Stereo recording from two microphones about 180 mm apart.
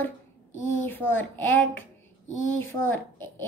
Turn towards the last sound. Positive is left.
turn(degrees=10)  # may be behind; listen again after turning